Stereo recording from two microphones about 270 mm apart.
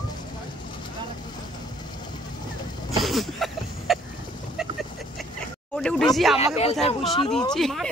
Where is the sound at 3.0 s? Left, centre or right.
Centre.